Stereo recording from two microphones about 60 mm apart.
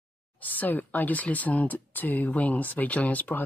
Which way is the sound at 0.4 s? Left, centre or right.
Left.